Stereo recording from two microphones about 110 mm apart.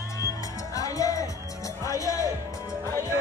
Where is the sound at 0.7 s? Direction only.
30° left (ahead or behind).